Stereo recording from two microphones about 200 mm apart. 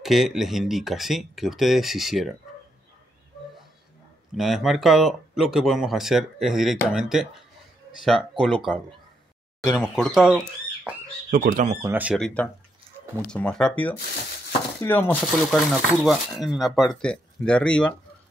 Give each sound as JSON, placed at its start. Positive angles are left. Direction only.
{"t": 0.0, "sound": "speech", "side_deg": 0}
{"t": 4.4, "sound": "speech", "side_deg": 0}
{"t": 11.2, "sound": "speech", "side_deg": -40}
{"t": 11.8, "sound": "speech", "side_deg": -10}
{"t": 13.3, "sound": "speech", "side_deg": 5}